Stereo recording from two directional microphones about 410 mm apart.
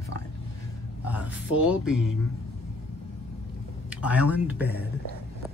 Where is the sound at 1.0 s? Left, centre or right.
Centre.